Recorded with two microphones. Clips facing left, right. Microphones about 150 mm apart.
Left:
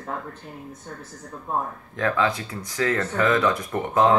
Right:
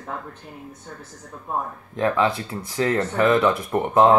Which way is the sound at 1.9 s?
25° right (ahead or behind).